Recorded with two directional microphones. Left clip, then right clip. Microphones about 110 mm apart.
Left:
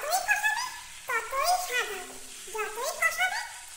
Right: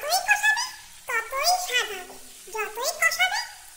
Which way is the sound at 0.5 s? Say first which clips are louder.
Right 4 dB; 15° right (ahead or behind).